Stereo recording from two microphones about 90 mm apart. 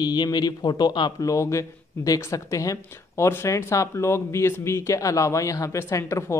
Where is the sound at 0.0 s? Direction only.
50° left (ahead or behind).